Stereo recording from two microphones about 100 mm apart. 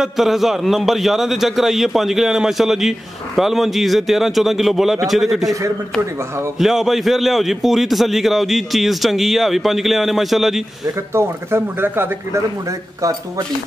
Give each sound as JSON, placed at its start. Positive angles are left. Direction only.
{"t": 0.0, "sound": "a man's voice", "side_deg": 0}
{"t": 6.6, "sound": "a man's voice", "side_deg": -5}
{"t": 11.1, "sound": "speech", "side_deg": -25}